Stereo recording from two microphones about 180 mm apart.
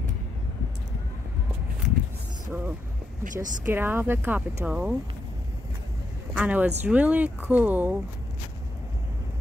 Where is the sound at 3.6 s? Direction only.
10° right (ahead or behind).